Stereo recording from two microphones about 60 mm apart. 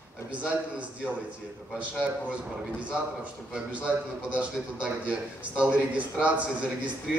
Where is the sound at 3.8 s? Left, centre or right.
Centre.